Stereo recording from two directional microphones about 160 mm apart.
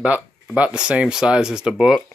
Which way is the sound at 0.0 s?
5° right (ahead or behind).